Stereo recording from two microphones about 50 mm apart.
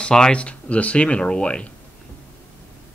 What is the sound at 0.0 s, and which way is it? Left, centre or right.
Speech, centre.